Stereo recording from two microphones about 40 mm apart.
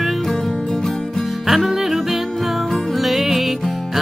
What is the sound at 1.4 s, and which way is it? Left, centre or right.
Music, centre.